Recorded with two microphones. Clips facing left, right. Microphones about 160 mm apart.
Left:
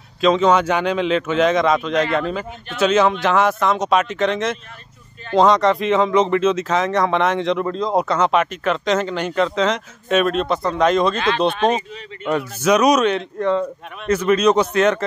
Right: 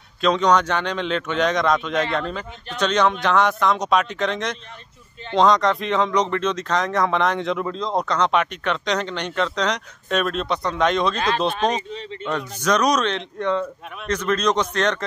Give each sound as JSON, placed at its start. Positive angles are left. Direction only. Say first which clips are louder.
{"t": 0.2, "sound": "speech", "louder": "left 3 dB", "side_deg": 5}
{"t": 11.1, "sound": "speech", "louder": "left 3 dB", "side_deg": -40}
{"t": 12.6, "sound": "speech", "louder": "left 5 dB", "side_deg": 10}